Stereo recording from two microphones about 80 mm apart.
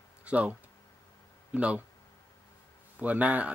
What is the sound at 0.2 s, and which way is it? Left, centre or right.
Speech, centre.